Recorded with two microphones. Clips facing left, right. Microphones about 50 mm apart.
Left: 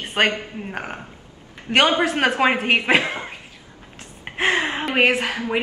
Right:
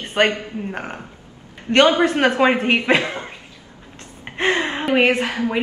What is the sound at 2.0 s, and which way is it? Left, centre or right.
Speech, centre.